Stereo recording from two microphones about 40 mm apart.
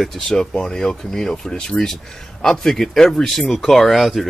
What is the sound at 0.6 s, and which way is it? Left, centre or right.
Speech, centre.